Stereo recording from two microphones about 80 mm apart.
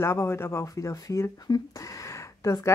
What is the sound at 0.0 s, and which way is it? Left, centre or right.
Speech, left.